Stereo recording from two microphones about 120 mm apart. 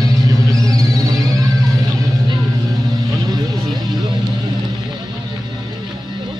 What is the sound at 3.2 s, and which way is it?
Vehicle, 30° right (ahead or behind).